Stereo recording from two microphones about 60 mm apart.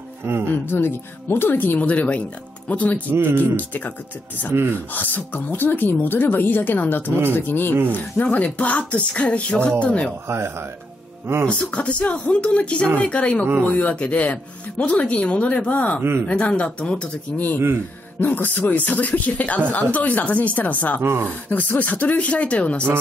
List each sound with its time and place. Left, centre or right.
0.2 s speech: right
0.5 s speech: left
3.1 s speech: right
3.5 s speech: left
4.5 s speech: right
4.7 s speech: left
10.2 s speech: right
11.4 s speech: centre
16.0 s speech: right
16.3 s speech: centre
18.2 s speech: left
21.0 s speech: right
21.3 s speech: left